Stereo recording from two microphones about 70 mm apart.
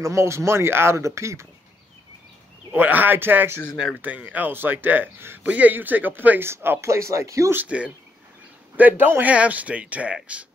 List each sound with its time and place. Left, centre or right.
0.0 s speech: right
2.7 s speech: right
7.5 s speech: centre